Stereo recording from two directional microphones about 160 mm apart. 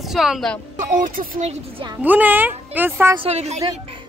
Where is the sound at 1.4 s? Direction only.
40° right (ahead or behind).